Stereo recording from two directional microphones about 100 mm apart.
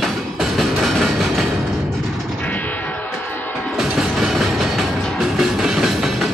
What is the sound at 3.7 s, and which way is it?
Music, 5° right (ahead or behind).